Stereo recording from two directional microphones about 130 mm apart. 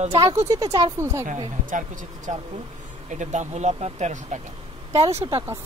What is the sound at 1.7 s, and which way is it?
Speech, 75° right (ahead or behind).